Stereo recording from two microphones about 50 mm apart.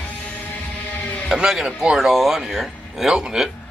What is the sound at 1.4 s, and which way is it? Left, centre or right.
A man's voice, centre.